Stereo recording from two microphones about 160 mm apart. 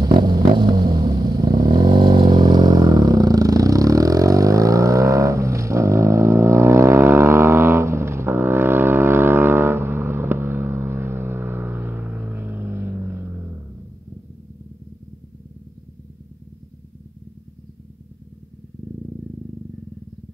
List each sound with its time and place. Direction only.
0.0 s vehicle: 30° right (ahead or behind); by 13.5 s 15° right (ahead or behind)